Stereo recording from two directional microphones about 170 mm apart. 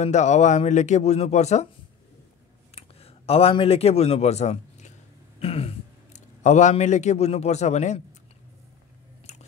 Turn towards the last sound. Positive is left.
turn(degrees=40)  # may be behind; listen again after turning